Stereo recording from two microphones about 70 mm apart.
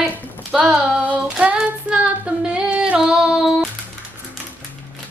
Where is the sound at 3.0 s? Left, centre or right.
Centre.